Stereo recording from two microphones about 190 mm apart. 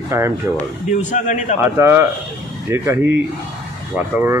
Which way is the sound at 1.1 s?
40° left (ahead or behind).